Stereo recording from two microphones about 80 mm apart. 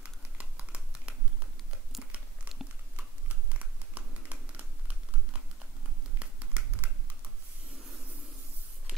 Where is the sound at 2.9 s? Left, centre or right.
Centre.